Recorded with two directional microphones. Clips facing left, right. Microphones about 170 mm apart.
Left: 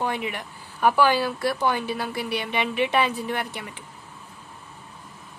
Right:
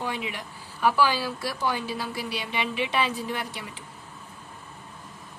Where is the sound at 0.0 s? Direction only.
55° left (ahead or behind).